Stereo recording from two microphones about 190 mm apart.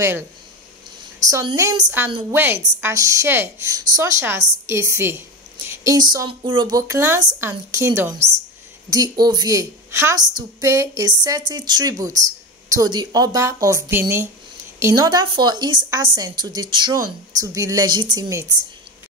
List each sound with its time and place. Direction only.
1.3 s a woman's voice: 20° right (ahead or behind)